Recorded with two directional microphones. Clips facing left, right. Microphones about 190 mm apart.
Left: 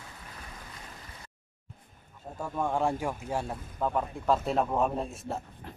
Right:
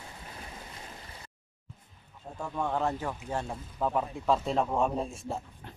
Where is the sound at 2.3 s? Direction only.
10° left (ahead or behind).